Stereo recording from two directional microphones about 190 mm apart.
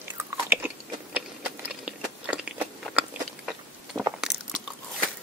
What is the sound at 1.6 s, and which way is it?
Crunch, 5° right (ahead or behind).